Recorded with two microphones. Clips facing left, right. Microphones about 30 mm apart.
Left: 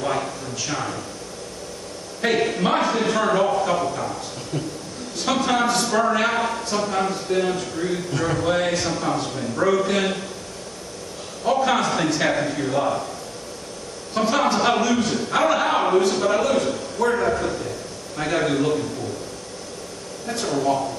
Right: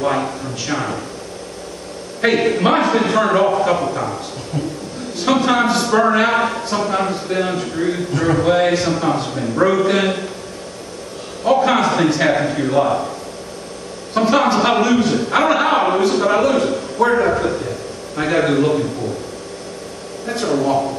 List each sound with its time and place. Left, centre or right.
0.0 s a man's voice: centre
2.2 s a man's voice: right
11.4 s a man's voice: centre
14.1 s a man's voice: right
20.2 s speech: centre